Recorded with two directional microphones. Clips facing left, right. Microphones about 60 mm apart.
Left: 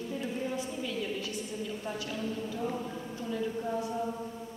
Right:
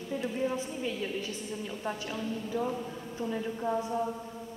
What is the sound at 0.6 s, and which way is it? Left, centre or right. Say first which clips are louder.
A woman's voice: right 1 dB; right.